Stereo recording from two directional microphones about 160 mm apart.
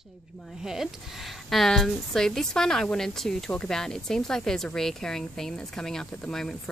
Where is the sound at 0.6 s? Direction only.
Centre (ahead or behind).